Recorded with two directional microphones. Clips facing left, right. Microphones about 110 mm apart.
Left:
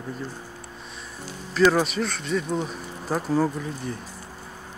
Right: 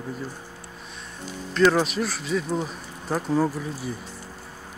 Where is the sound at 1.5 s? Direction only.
Centre (ahead or behind).